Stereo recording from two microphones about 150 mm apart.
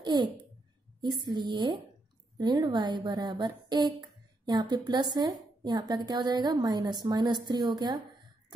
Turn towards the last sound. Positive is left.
turn(degrees=-30)  # may be behind; listen again after turning